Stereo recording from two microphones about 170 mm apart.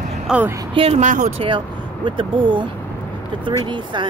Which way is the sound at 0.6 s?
35° right (ahead or behind).